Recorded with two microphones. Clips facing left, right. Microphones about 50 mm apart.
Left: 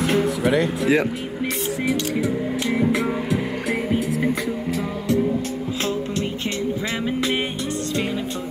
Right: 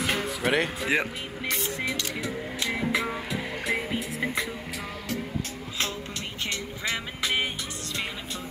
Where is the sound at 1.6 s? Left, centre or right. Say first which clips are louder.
Left 7 dB; centre.